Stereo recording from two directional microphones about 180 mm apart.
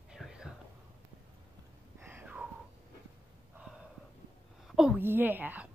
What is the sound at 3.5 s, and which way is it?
Gasp, 5° right (ahead or behind).